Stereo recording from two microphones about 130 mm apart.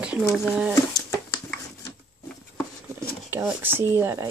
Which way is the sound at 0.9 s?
25° left (ahead or behind).